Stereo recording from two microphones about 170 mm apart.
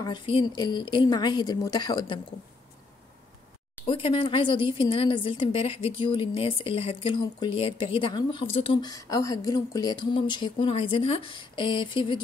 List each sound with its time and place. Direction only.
0.0 s speech: 30° left (ahead or behind)
3.8 s speech: 30° left (ahead or behind)
8.9 s speech: 20° left (ahead or behind)